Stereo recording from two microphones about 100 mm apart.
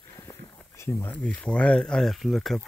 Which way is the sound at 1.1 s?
10° left (ahead or behind).